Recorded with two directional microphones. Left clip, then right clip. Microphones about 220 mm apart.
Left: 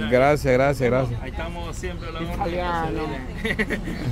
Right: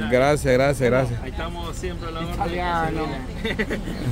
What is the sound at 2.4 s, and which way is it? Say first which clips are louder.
Speech: right 1 dB; 25° right (ahead or behind).